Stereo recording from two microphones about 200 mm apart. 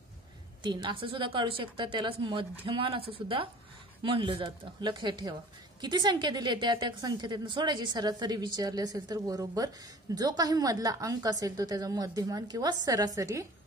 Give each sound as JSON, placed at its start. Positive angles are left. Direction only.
{"t": 0.6, "sound": "a woman's voice", "side_deg": -20}